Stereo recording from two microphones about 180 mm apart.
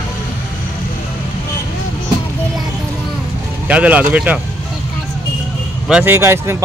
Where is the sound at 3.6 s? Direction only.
10° right (ahead or behind).